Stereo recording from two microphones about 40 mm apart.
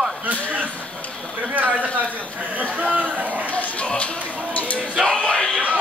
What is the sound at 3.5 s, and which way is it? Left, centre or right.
Music, left.